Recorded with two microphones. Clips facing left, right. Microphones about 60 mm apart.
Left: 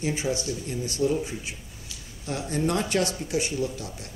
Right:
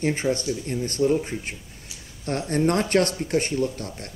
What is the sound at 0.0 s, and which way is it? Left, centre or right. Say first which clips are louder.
Speech: right 4 dB; right.